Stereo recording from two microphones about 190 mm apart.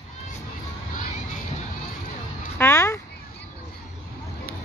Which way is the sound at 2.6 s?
15° left (ahead or behind).